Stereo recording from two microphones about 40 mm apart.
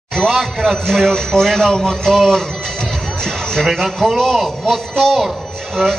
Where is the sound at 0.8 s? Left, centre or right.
Centre.